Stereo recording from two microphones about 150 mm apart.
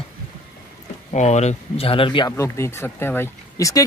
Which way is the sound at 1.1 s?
50° left (ahead or behind).